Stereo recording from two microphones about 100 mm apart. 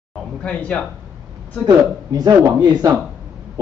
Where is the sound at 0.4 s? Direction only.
10° left (ahead or behind).